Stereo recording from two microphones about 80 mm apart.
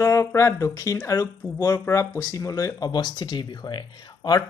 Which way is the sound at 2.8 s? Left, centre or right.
Left.